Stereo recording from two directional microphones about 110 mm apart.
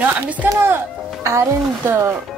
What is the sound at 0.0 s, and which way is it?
Speech, 15° right (ahead or behind).